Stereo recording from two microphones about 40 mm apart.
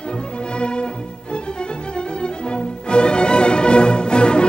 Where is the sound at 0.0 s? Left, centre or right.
Left.